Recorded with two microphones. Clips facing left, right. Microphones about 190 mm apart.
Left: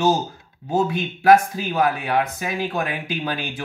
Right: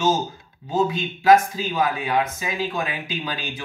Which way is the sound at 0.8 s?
55° left (ahead or behind).